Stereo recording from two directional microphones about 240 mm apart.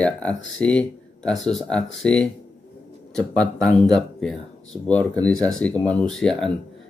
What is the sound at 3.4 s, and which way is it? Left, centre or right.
Speech, centre.